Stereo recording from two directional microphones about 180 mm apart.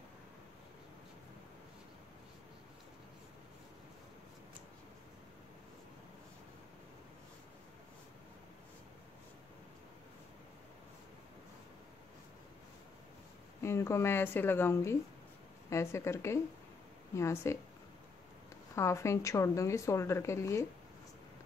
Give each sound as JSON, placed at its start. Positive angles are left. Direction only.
{"t": 13.6, "sound": "speech", "side_deg": 15}
{"t": 18.8, "sound": "speech", "side_deg": 15}